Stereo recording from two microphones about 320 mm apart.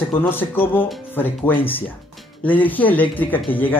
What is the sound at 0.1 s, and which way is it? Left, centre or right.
Speech, centre.